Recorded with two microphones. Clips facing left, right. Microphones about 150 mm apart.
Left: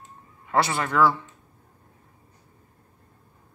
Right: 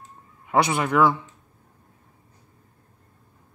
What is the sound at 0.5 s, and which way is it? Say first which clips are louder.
Speech: right 3 dB; 15° right (ahead or behind).